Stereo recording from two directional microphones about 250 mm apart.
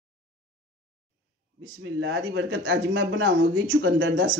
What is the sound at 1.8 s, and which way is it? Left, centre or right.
Speech, right.